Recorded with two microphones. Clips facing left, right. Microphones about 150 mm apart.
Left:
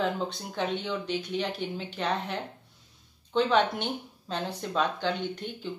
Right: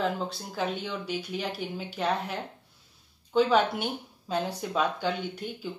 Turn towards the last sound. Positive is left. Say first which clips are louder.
# left 1 dB
turn(degrees=-10)  # may be behind; listen again after turning